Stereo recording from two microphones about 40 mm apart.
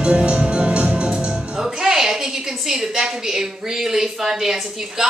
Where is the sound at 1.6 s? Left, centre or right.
Centre.